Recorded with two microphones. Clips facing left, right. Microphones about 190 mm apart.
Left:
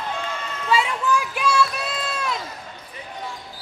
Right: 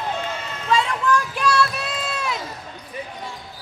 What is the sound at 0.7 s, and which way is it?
Run, 5° left (ahead or behind).